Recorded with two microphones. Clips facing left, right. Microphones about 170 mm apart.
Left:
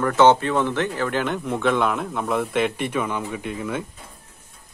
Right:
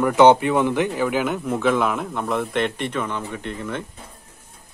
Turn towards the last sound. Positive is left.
turn(degrees=10)  # may be behind; listen again after turning